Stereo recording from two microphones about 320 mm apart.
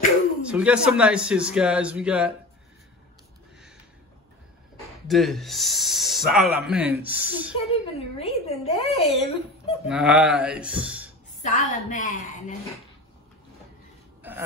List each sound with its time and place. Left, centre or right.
0.5 s speech: centre
5.0 s speech: centre
7.7 s speech: centre
9.8 s speech: centre
11.4 s speech: left